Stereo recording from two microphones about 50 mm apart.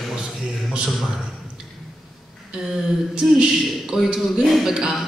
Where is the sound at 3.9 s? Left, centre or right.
Centre.